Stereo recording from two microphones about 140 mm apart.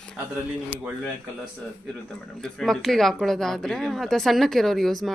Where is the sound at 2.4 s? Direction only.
5° left (ahead or behind).